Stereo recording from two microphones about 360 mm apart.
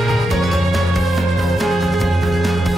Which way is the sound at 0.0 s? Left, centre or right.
Centre.